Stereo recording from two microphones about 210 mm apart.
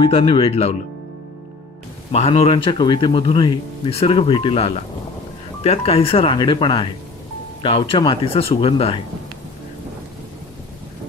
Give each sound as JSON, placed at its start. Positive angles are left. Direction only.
{"t": 0.0, "sound": "speech", "side_deg": 25}
{"t": 2.1, "sound": "speech", "side_deg": 30}